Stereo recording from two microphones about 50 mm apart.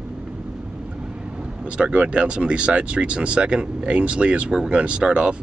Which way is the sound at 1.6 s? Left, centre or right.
Right.